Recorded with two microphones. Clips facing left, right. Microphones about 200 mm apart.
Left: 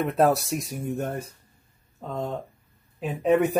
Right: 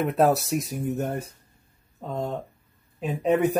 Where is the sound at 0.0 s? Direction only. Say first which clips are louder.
Even; centre (ahead or behind).